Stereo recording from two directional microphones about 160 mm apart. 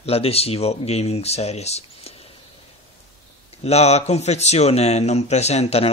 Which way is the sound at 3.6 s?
40° left (ahead or behind).